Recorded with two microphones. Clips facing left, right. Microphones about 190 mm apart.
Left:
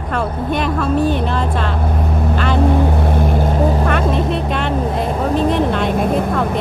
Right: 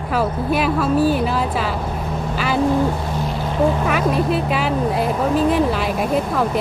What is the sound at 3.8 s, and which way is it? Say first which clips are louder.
Speech: left 1 dB; 5° right (ahead or behind).